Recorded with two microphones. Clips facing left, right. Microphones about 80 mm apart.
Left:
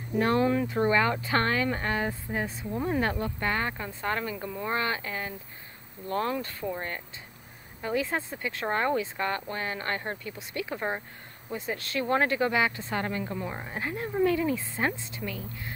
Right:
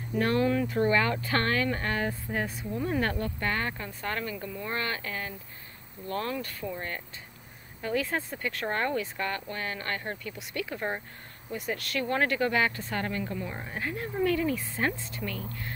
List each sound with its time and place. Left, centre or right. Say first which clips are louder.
0.2 s speech: left 1 dB; left